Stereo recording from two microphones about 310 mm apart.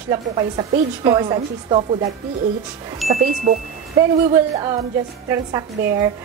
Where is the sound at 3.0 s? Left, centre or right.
Centre.